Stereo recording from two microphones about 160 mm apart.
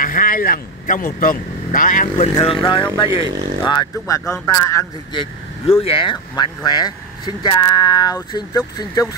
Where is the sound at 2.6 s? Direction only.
30° left (ahead or behind).